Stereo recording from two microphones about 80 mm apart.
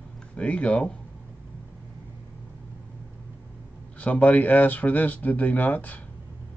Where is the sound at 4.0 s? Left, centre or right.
Centre.